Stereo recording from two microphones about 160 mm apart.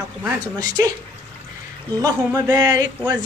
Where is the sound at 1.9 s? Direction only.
20° right (ahead or behind).